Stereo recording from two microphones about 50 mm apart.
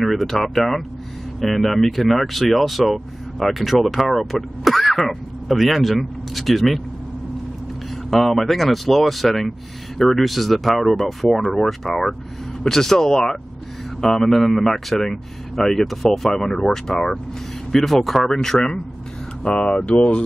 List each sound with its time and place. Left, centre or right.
0.0 s speech: centre
8.1 s speech: centre